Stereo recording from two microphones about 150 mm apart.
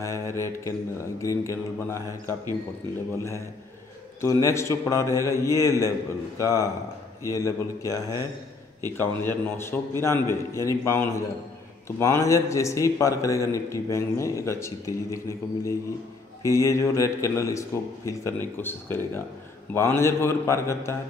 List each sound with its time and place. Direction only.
0.0 s a man's voice: 20° left (ahead or behind)
4.2 s a man's voice: 20° left (ahead or behind)